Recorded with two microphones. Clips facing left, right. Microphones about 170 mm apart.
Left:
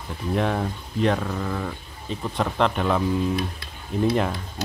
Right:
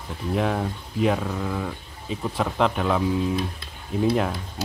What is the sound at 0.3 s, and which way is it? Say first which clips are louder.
Speech: even; 5° right (ahead or behind).